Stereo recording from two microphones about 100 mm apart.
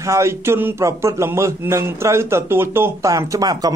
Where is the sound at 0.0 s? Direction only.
30° right (ahead or behind).